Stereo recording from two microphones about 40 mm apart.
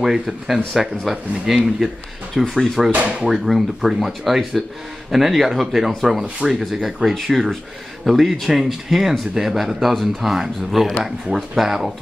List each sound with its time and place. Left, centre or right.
0.0 s speech: centre
1.1 s speech: centre
1.5 s speech: centre
2.5 s speech: centre
3.0 s speech: right
3.3 s speech: centre